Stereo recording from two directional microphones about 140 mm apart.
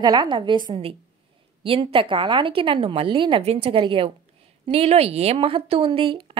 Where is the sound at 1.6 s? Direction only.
40° right (ahead or behind).